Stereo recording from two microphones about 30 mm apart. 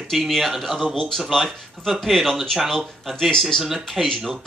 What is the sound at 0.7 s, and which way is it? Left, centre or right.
Speech, centre.